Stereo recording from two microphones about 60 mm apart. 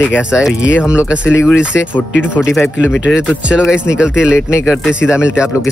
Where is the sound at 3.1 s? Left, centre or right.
Centre.